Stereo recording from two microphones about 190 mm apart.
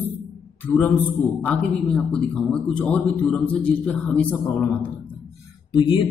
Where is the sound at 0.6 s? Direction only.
10° left (ahead or behind).